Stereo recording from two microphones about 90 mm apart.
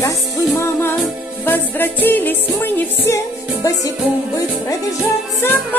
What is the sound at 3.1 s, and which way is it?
Music, 40° left (ahead or behind).